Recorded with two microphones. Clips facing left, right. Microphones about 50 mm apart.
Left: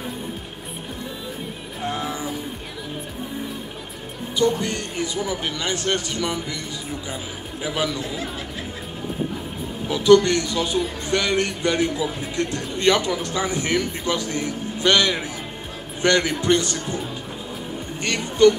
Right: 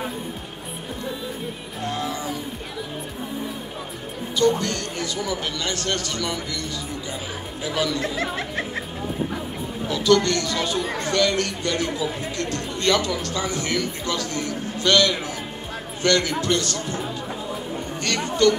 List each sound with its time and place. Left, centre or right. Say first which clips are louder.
1.9 s a sound: even; centre
4.4 s speech: right 1 dB; centre
7.6 s speech: even; centre
8.0 s speech: right 3 dB; right
9.8 s speech: left 4 dB; centre
10.8 s speech: even; right
11.1 s speech: right 1 dB; centre
18.0 s speech: left 4 dB; centre